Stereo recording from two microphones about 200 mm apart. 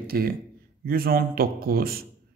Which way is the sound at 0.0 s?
50° right (ahead or behind).